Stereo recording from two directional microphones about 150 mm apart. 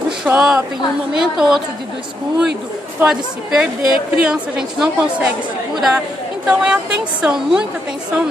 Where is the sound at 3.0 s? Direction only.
5° right (ahead or behind).